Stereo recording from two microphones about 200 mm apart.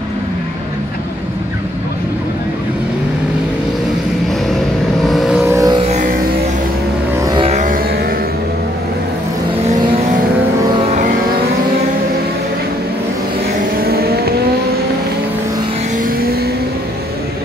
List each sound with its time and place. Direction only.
5.0 s vehicle: centre (ahead or behind)
5.5 s music: 20° right (ahead or behind)
7.2 s music: 25° right (ahead or behind)
7.5 s music: 40° right (ahead or behind)
13.7 s vehicle: 50° right (ahead or behind)
16.0 s vehicle: 50° right (ahead or behind)